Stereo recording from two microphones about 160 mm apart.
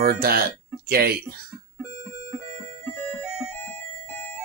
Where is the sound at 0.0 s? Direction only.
75° right (ahead or behind).